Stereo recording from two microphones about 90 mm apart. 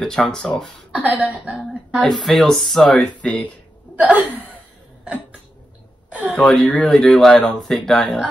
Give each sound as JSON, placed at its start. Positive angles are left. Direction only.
{"t": 0.0, "sound": "speech", "side_deg": 5}
{"t": 0.9, "sound": "speech", "side_deg": -15}
{"t": 2.0, "sound": "speech", "side_deg": 5}
{"t": 3.9, "sound": "speech", "side_deg": -15}
{"t": 6.3, "sound": "speech", "side_deg": 5}